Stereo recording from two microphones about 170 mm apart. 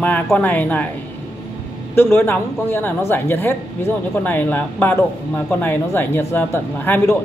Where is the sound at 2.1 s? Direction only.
15° left (ahead or behind).